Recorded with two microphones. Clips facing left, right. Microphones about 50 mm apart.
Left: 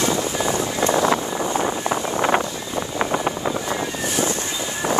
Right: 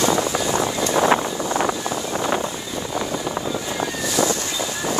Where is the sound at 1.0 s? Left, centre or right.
Right.